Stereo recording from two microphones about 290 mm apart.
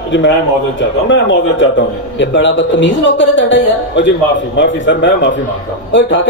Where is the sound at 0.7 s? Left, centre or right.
Left.